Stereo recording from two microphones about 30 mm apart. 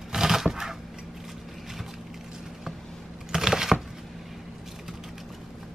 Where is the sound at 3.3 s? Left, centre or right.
Centre.